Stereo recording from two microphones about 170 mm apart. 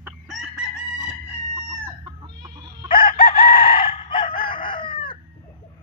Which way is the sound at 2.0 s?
25° right (ahead or behind).